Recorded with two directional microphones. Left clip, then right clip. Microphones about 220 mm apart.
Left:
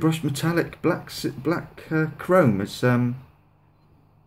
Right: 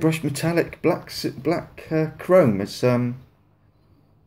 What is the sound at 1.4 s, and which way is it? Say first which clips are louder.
Speech: right 3 dB; 15° left (ahead or behind).